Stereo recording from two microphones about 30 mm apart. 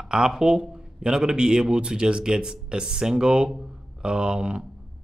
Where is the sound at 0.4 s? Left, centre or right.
Right.